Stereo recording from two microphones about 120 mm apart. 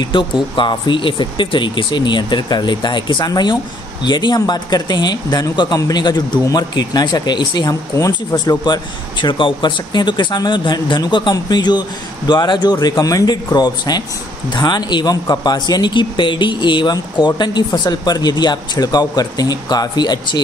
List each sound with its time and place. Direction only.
0.0 s speech: 40° left (ahead or behind)